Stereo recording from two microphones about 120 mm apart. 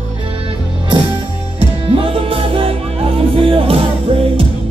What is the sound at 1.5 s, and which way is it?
Music, 50° right (ahead or behind).